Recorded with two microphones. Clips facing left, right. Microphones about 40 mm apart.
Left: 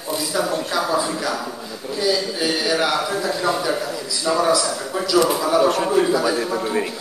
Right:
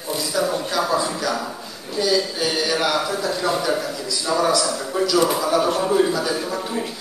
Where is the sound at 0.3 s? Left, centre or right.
Left.